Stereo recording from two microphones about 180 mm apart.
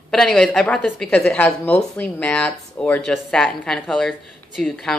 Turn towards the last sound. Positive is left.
turn(degrees=0)  # may be behind; listen again after turning